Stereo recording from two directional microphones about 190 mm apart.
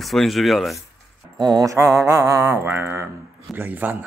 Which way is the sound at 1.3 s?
20° right (ahead or behind).